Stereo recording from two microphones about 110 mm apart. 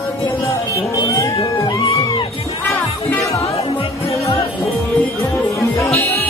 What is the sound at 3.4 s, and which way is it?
Music, 65° left (ahead or behind).